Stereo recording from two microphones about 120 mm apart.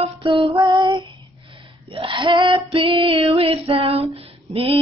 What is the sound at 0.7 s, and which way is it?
Child singing, 40° right (ahead or behind).